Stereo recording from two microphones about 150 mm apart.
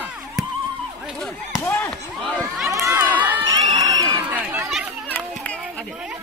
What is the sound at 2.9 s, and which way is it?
Crowd, 10° right (ahead or behind).